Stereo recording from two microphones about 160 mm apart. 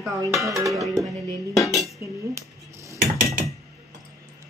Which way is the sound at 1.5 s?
20° left (ahead or behind).